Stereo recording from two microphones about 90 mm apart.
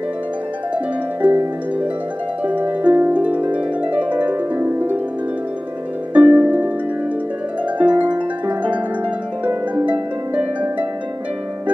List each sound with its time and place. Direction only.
1.2 s harp: 15° right (ahead or behind)
6.1 s harp: 15° right (ahead or behind)
7.8 s music: 15° right (ahead or behind)
9.4 s harp: 25° right (ahead or behind)
9.8 s harp: 15° right (ahead or behind)